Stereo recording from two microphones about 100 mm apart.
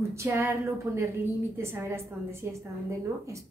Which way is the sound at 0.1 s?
25° right (ahead or behind).